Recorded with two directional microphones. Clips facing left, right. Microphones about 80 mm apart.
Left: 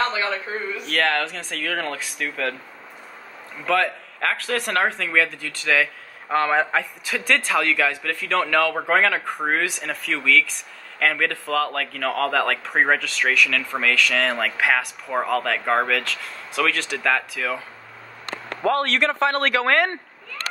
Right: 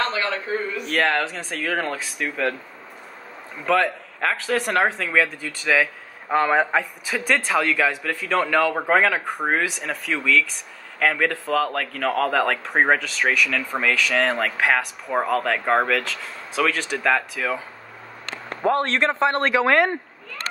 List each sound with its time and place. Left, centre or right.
0.0 s a sound: centre
0.8 s speech: centre
3.6 s speech: centre
18.6 s a man's voice: right
19.6 s speech: centre